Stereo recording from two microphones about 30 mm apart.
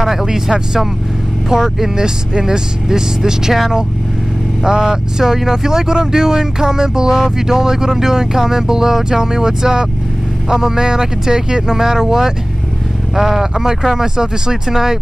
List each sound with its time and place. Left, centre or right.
0.0 s speech: centre
1.5 s speech: centre
4.6 s speech: centre